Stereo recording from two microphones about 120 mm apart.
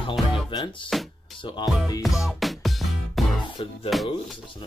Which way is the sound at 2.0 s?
Centre (ahead or behind).